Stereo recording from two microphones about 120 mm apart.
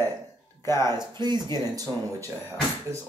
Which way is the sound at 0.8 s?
35° right (ahead or behind).